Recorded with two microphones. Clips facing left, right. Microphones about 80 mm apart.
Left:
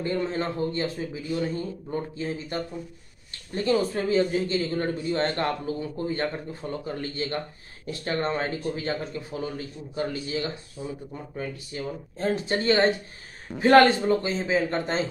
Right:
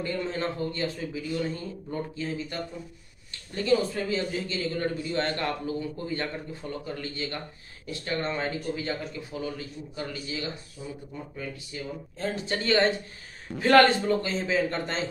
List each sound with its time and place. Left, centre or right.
0.0 s a man's voice: left
10.8 s speech: left
11.3 s speech: left; by 15.0 s centre